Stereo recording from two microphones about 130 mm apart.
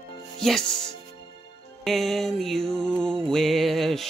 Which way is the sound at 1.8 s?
Centre (ahead or behind).